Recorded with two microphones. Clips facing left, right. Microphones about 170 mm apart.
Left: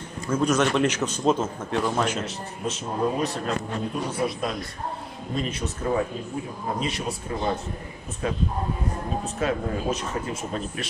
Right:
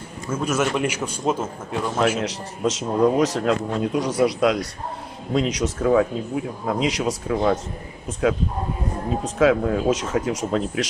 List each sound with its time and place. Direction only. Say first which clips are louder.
0.3 s a man's voice: left 1 dB; 5° right (ahead or behind)
2.2 s a man's voice: right 7 dB; 90° right